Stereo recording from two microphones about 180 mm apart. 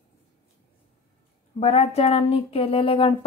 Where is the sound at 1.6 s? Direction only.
35° left (ahead or behind).